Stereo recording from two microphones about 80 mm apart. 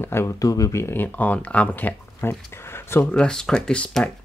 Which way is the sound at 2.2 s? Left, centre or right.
Left.